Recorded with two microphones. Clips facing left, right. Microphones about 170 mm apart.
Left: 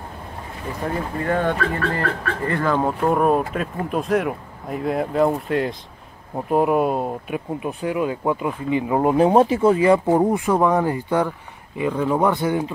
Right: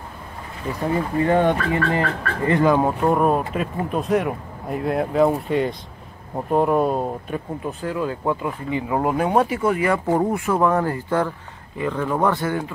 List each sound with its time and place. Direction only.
1.2 s speech: 20° right (ahead or behind)
3.1 s speech: centre (ahead or behind); by 12.7 s 15° left (ahead or behind)